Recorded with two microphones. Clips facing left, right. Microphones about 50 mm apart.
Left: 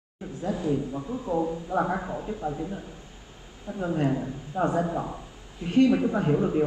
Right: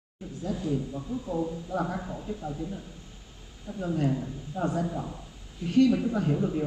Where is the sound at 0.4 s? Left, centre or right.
Left.